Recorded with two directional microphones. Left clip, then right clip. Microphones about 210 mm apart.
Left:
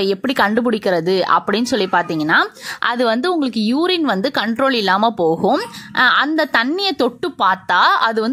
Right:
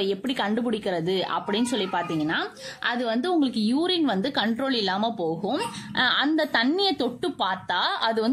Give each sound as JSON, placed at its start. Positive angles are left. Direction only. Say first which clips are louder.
{"t": 0.1, "sound": "a woman's voice", "louder": "left 10 dB", "side_deg": 35}